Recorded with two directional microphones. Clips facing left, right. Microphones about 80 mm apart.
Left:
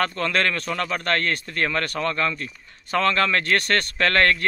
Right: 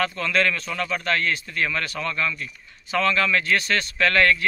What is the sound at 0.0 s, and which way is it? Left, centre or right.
Speech, left.